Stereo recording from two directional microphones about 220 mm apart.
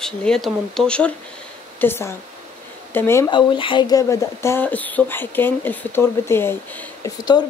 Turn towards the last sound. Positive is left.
turn(degrees=20)  # may be behind; listen again after turning